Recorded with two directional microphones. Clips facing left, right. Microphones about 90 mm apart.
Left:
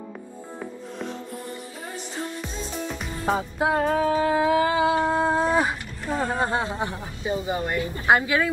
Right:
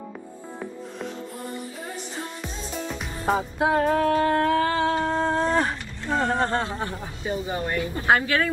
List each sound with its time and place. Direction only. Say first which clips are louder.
2.4 s music: left 1 dB; centre (ahead or behind); by 7.9 s 20° left (ahead or behind)
8.1 s speech: left 1 dB; 15° left (ahead or behind)